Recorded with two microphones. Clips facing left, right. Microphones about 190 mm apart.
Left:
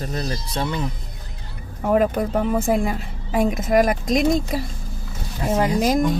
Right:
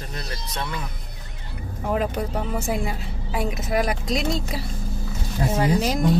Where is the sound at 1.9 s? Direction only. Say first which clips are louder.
Left 7 dB; 50° left (ahead or behind).